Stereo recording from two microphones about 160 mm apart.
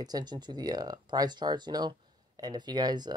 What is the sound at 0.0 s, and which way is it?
Speech, 25° right (ahead or behind).